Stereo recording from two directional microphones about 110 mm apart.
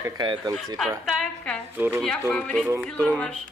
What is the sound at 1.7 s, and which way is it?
Speech, 15° right (ahead or behind).